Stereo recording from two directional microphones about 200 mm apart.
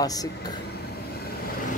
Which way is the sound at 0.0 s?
20° left (ahead or behind).